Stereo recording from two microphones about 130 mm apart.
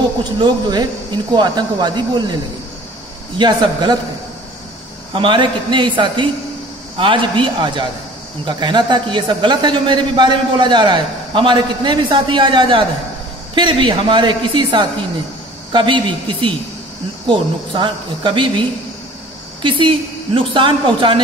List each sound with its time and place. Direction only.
0.4 s a man's voice: 35° right (ahead or behind)
5.1 s a man's voice: 40° right (ahead or behind)